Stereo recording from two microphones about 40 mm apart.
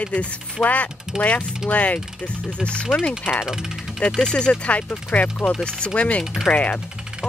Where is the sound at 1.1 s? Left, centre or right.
Centre.